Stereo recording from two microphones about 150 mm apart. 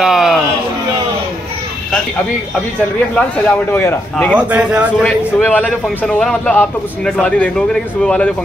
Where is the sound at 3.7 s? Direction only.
15° left (ahead or behind).